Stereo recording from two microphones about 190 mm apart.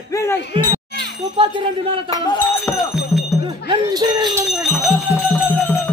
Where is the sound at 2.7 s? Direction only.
5° left (ahead or behind).